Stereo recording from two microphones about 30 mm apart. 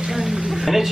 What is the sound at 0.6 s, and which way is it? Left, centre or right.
Speech, centre.